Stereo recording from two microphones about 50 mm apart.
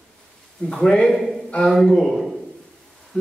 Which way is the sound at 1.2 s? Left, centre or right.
Centre.